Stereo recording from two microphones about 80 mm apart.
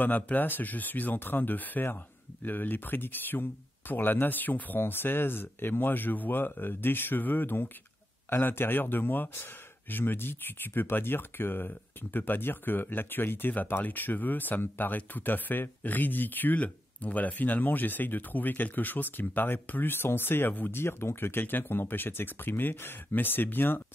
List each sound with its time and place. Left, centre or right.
0.0 s speech: left